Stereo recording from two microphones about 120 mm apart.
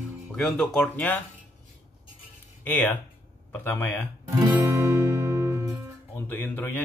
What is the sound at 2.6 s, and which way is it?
Speech, 15° left (ahead or behind).